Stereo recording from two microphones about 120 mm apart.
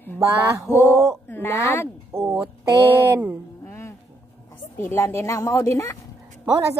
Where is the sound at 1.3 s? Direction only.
20° left (ahead or behind).